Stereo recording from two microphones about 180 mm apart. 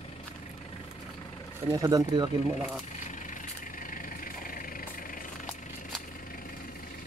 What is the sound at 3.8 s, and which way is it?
Vehicle, 50° left (ahead or behind).